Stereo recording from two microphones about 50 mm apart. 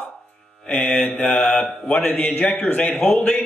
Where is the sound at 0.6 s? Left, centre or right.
Left.